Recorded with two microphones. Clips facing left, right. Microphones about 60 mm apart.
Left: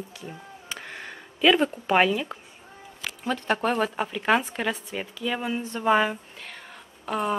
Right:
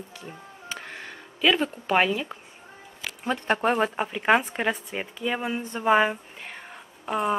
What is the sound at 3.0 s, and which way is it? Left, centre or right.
Speech, centre.